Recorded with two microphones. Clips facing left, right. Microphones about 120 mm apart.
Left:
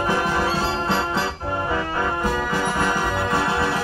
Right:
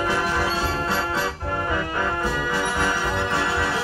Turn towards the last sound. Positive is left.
turn(degrees=10)  # may be behind; listen again after turning